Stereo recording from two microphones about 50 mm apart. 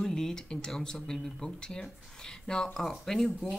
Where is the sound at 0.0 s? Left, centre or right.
Centre.